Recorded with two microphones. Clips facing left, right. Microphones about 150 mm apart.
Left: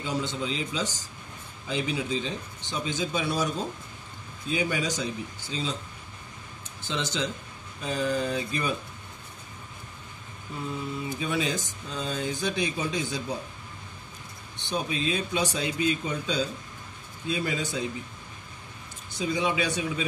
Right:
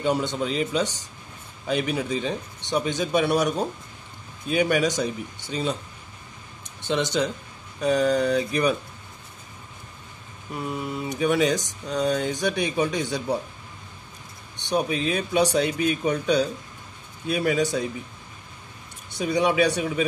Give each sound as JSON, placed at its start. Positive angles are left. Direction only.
{"t": 0.0, "sound": "speech", "side_deg": -65}
{"t": 6.6, "sound": "a sound", "side_deg": -70}
{"t": 7.8, "sound": "speech", "side_deg": -70}
{"t": 10.5, "sound": "speech", "side_deg": -65}
{"t": 14.6, "sound": "speech", "side_deg": -65}
{"t": 19.0, "sound": "speech", "side_deg": -65}